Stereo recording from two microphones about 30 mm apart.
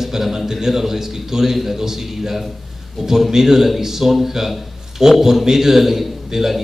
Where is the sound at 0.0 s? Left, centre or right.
Centre.